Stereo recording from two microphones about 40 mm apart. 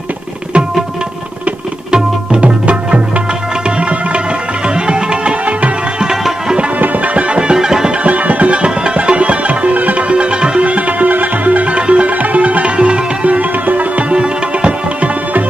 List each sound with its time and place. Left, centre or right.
1.9 s tabla: centre
2.4 s music: right
4.6 s music: right
6.8 s music: right
7.3 s music: right
8.0 s music: right
14.1 s music: right